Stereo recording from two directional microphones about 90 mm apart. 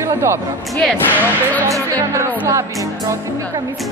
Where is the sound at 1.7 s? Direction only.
35° right (ahead or behind).